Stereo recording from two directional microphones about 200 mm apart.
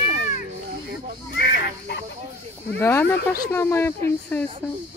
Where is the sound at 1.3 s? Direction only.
55° left (ahead or behind).